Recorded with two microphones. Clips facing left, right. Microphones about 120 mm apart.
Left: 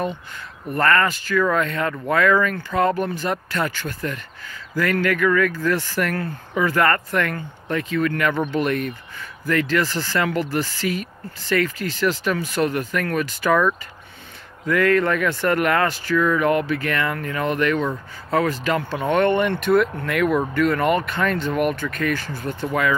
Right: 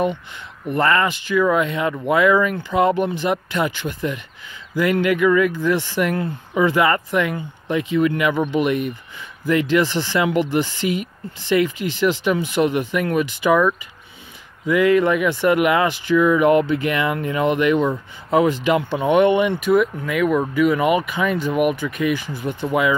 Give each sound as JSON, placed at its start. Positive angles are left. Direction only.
{"t": 0.7, "sound": "speech", "side_deg": -15}